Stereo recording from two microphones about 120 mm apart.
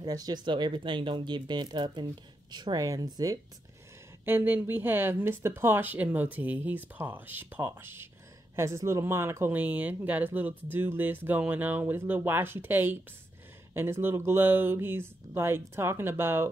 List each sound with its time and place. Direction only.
0.0 s speech: 30° right (ahead or behind)
4.2 s speech: 20° right (ahead or behind)